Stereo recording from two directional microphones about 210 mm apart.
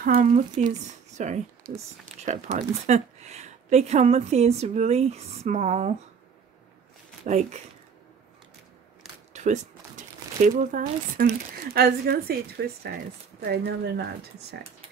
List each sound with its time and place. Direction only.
0.0 s speech: 40° right (ahead or behind)
7.2 s speech: 35° right (ahead or behind)
9.3 s speech: 35° right (ahead or behind); by 14.6 s 50° right (ahead or behind)